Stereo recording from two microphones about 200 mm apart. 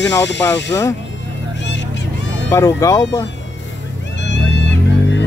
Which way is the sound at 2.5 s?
15° left (ahead or behind).